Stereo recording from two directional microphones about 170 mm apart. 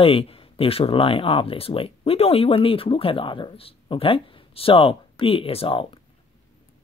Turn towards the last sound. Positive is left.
turn(degrees=30)  # may be behind; listen again after turning